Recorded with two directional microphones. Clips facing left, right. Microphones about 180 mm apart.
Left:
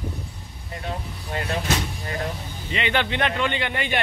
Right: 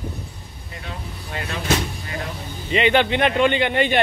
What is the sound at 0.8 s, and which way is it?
Speech, 45° left (ahead or behind).